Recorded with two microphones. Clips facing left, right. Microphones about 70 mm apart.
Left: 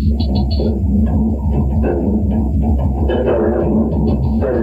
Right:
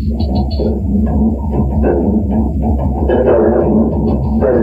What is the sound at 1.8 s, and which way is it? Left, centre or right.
Music, centre.